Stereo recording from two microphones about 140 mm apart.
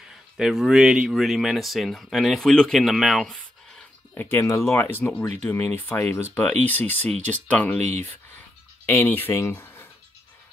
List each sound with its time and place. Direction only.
0.4 s speech: 5° right (ahead or behind)
4.2 s speech: 15° left (ahead or behind)